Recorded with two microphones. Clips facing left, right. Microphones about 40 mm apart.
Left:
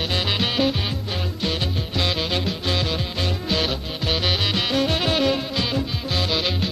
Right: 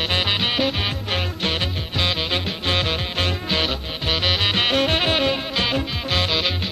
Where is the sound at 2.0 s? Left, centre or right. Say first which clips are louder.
Right 1 dB; right.